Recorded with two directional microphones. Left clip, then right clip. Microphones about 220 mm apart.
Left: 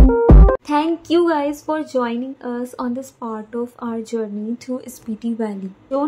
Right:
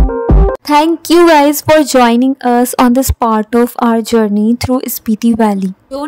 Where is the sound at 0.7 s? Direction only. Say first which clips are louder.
Right 9 dB; 50° right (ahead or behind).